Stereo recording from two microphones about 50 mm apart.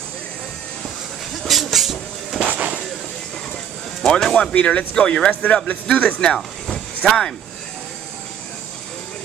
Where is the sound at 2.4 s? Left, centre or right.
Right.